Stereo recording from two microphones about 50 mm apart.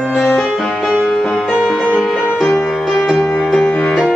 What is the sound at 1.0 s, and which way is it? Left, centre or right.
Music, centre.